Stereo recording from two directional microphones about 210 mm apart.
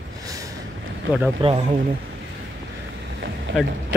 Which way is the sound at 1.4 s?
25° right (ahead or behind).